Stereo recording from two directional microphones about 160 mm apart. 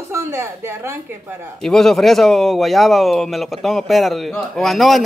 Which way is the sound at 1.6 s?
5° left (ahead or behind).